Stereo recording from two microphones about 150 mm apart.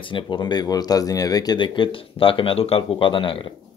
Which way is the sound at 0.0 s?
30° left (ahead or behind).